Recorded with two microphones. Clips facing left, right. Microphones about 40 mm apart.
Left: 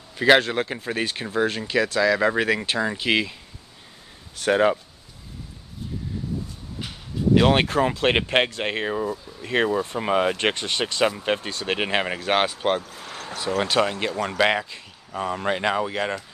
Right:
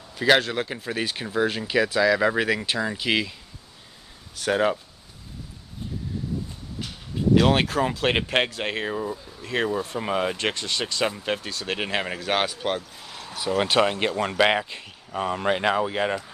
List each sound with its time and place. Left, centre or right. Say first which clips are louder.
0.1 s speech: left 3 dB; centre
4.4 s speech: left 3 dB; centre
7.3 s speech: left 2 dB; centre
13.6 s speech: right 1 dB; centre
14.3 s speech: left 1 dB; centre